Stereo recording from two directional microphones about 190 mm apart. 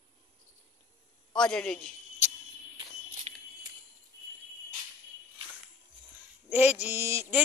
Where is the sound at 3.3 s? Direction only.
35° right (ahead or behind).